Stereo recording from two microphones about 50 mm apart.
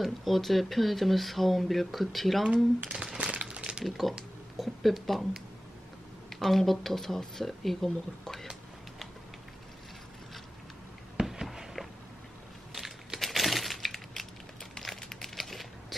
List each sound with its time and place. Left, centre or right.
0.0 s speech: centre
2.9 s crumpling: centre
3.8 s speech: centre
6.4 s speech: centre
11.1 s a sound: centre
12.7 s crushing: centre
15.0 s crumpling: centre